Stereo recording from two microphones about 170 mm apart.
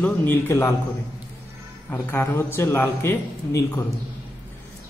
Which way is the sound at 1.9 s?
10° left (ahead or behind).